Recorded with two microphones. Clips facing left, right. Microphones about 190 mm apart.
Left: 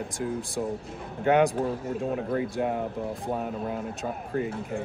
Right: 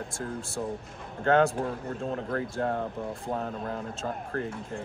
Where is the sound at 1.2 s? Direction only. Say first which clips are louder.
Left 1 dB; 15° left (ahead or behind).